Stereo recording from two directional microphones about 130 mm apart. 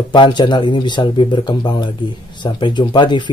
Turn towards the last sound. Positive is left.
turn(degrees=35)  # may be behind; listen again after turning